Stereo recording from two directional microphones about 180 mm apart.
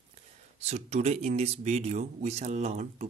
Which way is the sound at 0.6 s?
35° right (ahead or behind).